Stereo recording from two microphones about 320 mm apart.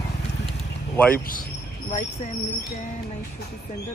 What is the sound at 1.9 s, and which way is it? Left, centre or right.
Speech, left.